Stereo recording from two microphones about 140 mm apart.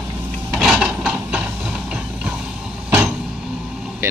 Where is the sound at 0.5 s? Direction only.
Centre (ahead or behind).